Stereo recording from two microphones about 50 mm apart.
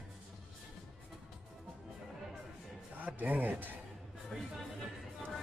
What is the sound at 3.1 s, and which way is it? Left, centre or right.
Speech, right.